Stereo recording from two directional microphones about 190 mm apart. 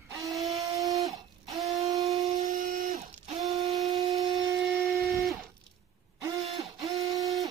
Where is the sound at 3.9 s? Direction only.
20° right (ahead or behind).